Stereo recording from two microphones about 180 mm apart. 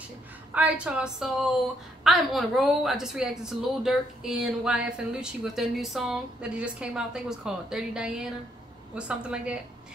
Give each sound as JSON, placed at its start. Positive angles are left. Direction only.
{"t": 0.6, "sound": "a woman's voice", "side_deg": -5}